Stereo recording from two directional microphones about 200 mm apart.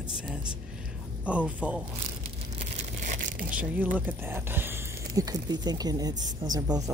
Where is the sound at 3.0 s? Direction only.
40° right (ahead or behind).